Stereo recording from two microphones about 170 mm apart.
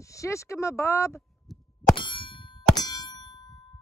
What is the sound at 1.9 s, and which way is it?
Clang, 30° left (ahead or behind).